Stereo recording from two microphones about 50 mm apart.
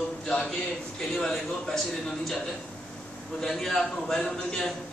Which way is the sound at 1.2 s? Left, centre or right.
Centre.